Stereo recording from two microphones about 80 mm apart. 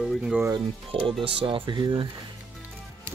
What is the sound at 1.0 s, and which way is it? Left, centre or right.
Speech, right.